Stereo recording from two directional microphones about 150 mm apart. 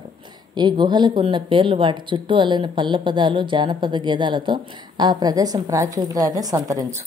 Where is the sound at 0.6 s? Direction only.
30° right (ahead or behind).